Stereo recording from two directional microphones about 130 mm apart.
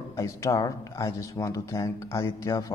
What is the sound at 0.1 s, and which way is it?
Speech, 25° left (ahead or behind).